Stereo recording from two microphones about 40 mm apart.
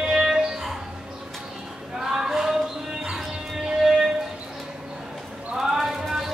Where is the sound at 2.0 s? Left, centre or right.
Centre.